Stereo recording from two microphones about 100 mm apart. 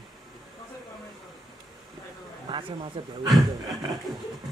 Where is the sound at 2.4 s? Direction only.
55° right (ahead or behind).